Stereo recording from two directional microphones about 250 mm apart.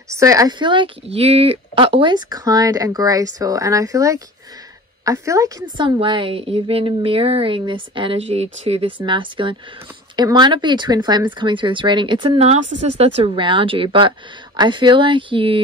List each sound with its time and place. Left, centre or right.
0.1 s a woman's voice: centre